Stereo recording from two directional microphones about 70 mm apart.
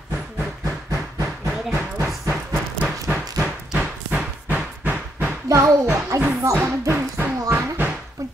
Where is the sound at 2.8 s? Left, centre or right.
Centre.